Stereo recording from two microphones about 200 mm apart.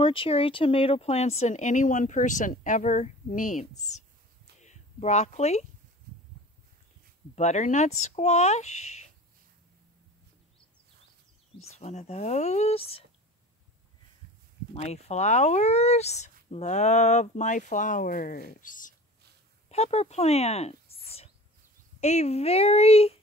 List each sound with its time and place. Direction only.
0.0 s speech: 25° left (ahead or behind)
7.3 s speech: 35° left (ahead or behind)
11.8 s speech: 35° left (ahead or behind)
14.7 s speech: 35° left (ahead or behind)
22.0 s speech: 35° left (ahead or behind)